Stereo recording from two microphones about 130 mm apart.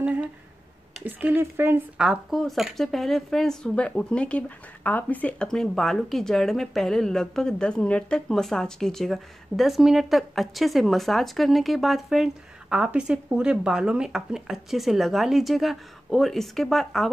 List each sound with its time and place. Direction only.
1.0 s speech: 15° right (ahead or behind)
2.0 s speech: centre (ahead or behind)